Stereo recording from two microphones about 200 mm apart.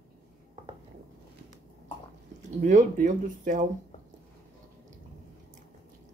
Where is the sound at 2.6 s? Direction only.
40° right (ahead or behind).